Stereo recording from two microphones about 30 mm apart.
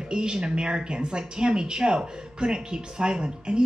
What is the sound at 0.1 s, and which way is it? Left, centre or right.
Speech, right.